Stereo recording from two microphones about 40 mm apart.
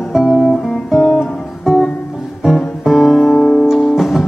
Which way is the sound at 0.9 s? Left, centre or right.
Centre.